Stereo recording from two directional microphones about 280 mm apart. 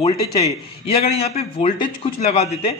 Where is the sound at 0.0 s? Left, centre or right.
Left.